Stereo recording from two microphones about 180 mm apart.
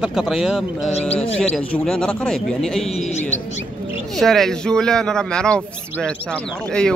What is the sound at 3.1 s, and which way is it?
Bird, 40° left (ahead or behind).